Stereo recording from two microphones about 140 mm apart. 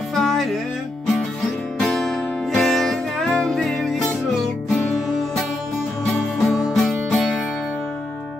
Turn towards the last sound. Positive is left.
turn(degrees=5)  # may be behind; listen again after turning